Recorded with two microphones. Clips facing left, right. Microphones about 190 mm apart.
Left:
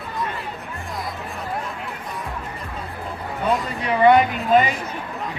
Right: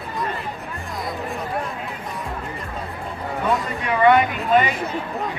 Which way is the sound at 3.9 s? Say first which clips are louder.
Left 1 dB; 25° left (ahead or behind).